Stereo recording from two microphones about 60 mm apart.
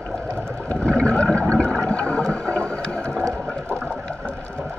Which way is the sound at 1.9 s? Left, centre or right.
Centre.